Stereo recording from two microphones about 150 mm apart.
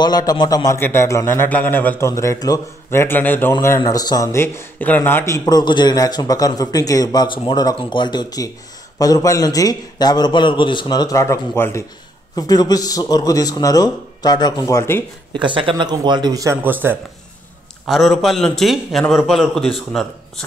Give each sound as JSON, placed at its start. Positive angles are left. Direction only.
{"t": 0.0, "sound": "a man's voice", "side_deg": 25}
{"t": 3.8, "sound": "speech", "side_deg": 25}
{"t": 15.3, "sound": "speech", "side_deg": -35}
{"t": 17.8, "sound": "a man's voice", "side_deg": 0}